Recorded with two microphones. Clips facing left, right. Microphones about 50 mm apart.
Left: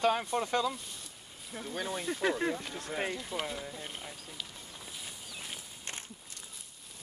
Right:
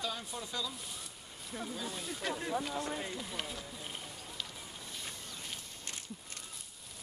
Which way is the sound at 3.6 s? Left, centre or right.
Left.